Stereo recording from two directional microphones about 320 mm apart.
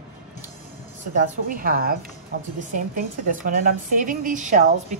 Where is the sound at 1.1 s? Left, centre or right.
Right.